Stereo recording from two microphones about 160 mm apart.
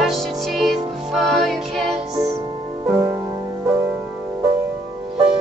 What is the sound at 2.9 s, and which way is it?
Music, 15° right (ahead or behind).